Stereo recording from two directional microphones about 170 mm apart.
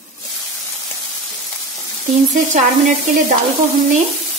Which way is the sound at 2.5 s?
50° right (ahead or behind).